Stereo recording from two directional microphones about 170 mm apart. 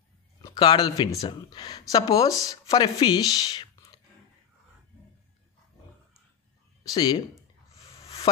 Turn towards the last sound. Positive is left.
turn(degrees=25)  # may be behind; listen again after turning